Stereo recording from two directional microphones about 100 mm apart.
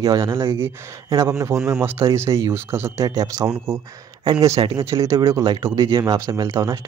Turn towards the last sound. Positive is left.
turn(degrees=-35)  # may be behind; listen again after turning